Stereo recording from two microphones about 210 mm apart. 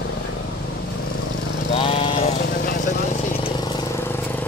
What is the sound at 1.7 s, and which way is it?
Vehicle, 25° left (ahead or behind).